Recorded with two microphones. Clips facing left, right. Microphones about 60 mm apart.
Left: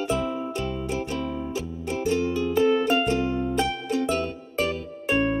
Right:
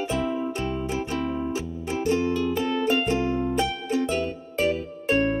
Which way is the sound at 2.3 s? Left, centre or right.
Centre.